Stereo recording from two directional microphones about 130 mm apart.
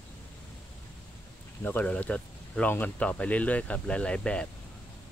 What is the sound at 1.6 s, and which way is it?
Speech, 10° left (ahead or behind).